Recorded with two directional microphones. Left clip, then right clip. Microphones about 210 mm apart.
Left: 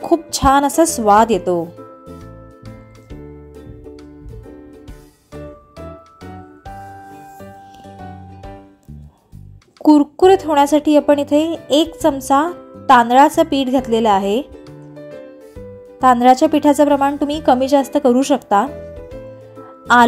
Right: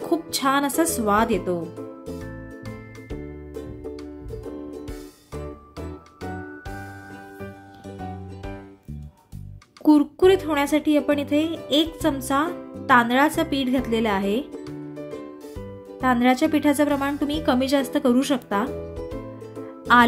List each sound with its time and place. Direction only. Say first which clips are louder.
0.1 s a woman's voice: left 9 dB; 20° left (ahead or behind)
5.3 s music: left 3 dB; centre (ahead or behind)
9.8 s a woman's voice: left 6 dB; 15° left (ahead or behind)
16.0 s speech: left 10 dB; 20° left (ahead or behind)
18.9 s music: left 1 dB; centre (ahead or behind)